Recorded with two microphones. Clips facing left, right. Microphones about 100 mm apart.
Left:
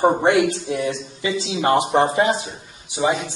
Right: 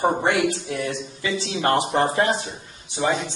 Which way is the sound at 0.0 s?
20° left (ahead or behind).